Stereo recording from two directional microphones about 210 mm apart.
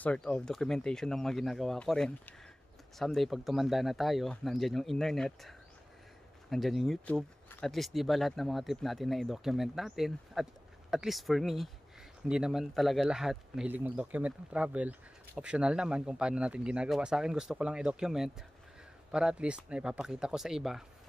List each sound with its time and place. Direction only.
0.0 s speech: 5° left (ahead or behind)